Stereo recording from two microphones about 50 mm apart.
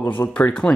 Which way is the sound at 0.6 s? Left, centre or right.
Left.